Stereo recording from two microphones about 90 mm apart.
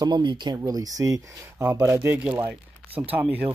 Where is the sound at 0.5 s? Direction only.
40° right (ahead or behind).